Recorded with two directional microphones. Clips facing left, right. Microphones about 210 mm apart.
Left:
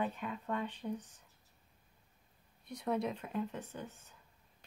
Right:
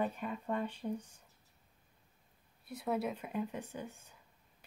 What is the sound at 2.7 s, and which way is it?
Speech, 5° right (ahead or behind).